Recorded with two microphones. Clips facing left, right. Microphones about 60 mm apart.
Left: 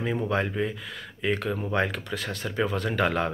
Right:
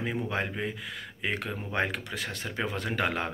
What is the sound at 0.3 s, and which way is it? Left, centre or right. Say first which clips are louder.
Speech: left 5 dB; centre.